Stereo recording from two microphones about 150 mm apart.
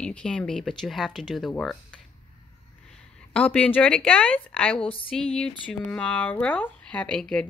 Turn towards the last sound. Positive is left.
turn(degrees=5)  # may be behind; listen again after turning